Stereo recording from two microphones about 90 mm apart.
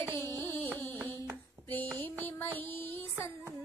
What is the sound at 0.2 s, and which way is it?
Carnatic music, 25° left (ahead or behind).